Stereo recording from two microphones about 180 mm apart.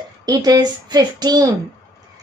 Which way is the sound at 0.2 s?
20° right (ahead or behind).